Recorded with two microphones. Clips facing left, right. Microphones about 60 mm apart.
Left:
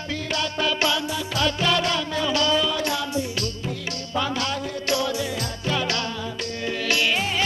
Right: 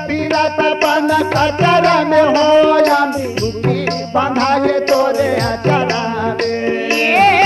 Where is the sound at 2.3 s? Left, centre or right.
Right.